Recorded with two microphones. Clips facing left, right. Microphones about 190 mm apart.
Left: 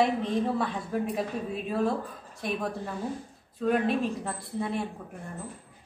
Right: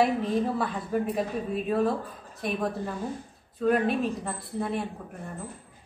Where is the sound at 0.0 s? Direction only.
5° right (ahead or behind).